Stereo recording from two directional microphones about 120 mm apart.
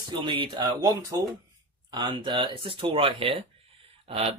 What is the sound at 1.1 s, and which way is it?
Speech, 30° right (ahead or behind).